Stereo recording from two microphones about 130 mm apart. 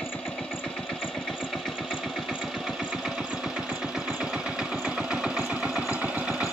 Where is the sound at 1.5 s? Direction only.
Centre (ahead or behind).